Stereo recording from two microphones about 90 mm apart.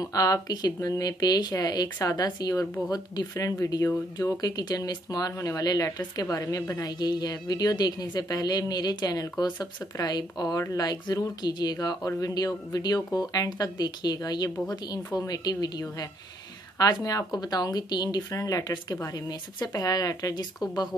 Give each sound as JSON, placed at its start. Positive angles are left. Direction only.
{"t": 0.0, "sound": "speech", "side_deg": 45}
{"t": 18.9, "sound": "speech", "side_deg": 40}